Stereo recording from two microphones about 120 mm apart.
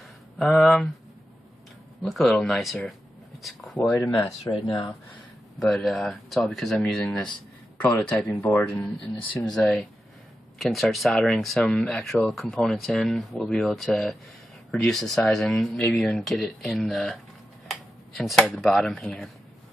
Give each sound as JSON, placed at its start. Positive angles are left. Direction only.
{"t": 0.4, "sound": "speech", "side_deg": 0}
{"t": 2.0, "sound": "speech", "side_deg": 0}
{"t": 4.5, "sound": "speech", "side_deg": 45}
{"t": 5.6, "sound": "speech", "side_deg": 5}
{"t": 8.7, "sound": "speech", "side_deg": 5}